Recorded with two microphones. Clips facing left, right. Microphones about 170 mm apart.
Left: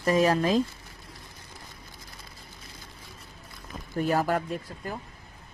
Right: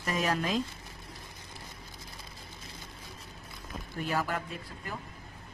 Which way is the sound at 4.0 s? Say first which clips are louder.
Left 7 dB; 45° left (ahead or behind).